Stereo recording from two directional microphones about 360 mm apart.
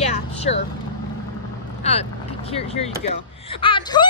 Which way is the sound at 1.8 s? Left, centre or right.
Centre.